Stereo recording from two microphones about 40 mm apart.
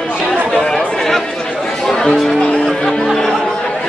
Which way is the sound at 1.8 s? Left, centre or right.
Centre.